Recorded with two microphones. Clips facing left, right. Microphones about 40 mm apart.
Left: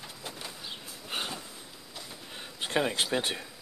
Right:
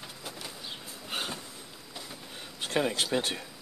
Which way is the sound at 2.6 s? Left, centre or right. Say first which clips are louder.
Even; centre.